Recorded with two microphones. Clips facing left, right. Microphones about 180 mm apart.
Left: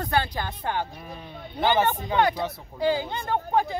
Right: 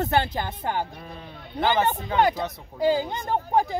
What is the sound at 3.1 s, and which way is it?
Speech, 15° right (ahead or behind).